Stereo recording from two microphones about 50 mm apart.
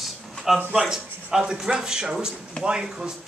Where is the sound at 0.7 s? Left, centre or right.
Centre.